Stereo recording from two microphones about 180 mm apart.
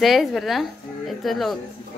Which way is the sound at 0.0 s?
Centre (ahead or behind).